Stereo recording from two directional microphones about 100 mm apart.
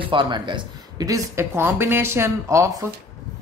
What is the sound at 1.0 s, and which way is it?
Speech, 30° right (ahead or behind).